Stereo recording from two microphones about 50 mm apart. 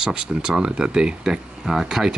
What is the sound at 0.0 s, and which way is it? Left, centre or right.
Speech, centre.